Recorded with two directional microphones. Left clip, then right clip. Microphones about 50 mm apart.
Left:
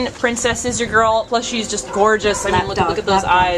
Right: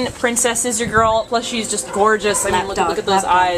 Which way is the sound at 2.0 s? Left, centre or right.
Centre.